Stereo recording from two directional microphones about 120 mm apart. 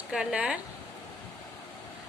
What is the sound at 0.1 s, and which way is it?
Speech, 10° right (ahead or behind).